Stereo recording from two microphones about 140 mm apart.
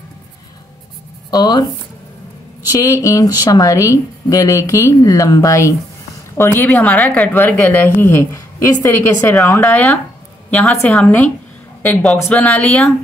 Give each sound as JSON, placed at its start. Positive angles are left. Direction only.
{"t": 1.3, "sound": "speech", "side_deg": 30}
{"t": 2.7, "sound": "speech", "side_deg": 25}
{"t": 6.6, "sound": "a woman's voice", "side_deg": 10}
{"t": 10.5, "sound": "a woman's voice", "side_deg": 5}